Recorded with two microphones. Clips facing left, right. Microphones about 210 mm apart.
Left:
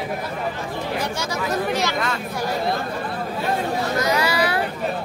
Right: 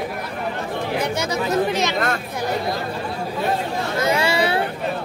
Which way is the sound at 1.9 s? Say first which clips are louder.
Right 3 dB; 50° right (ahead or behind).